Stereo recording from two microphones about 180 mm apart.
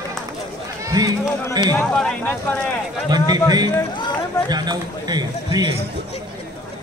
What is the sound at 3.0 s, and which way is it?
A man's voice, 20° right (ahead or behind).